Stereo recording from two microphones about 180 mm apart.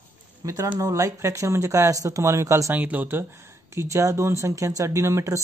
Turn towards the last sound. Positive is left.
turn(degrees=-15)  # may be behind; listen again after turning